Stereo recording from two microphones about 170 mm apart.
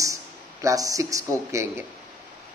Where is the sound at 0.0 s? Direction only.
20° right (ahead or behind).